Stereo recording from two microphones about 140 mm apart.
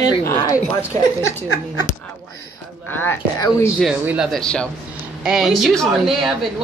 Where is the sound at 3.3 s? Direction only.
25° left (ahead or behind).